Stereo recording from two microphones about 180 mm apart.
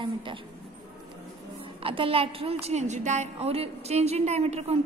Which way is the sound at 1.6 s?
30° right (ahead or behind).